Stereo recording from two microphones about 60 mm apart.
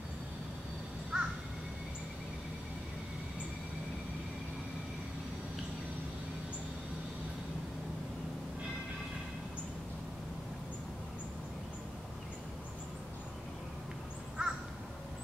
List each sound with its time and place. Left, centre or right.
1.1 s crow: centre
14.4 s crow: centre